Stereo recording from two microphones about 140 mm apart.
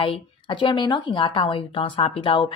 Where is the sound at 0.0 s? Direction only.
35° left (ahead or behind).